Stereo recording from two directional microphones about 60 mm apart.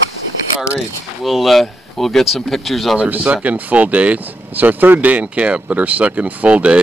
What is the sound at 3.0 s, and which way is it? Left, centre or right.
Speech, right.